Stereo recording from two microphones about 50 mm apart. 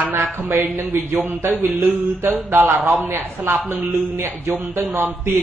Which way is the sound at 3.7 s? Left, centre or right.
Right.